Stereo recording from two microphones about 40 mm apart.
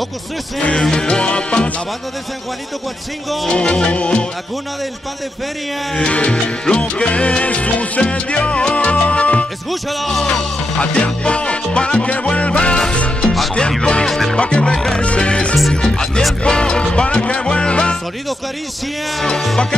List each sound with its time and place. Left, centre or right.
0.7 s music: centre
3.4 s music: left
5.9 s music: left
9.7 s music: centre
10.8 s music: left
14.0 s music: centre
14.3 s music: left
15.0 s music: left